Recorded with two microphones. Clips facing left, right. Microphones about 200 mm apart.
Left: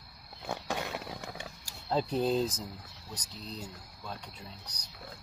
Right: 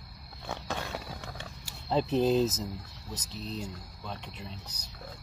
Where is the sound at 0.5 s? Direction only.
15° left (ahead or behind).